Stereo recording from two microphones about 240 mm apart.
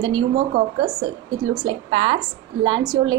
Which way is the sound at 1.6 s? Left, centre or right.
Right.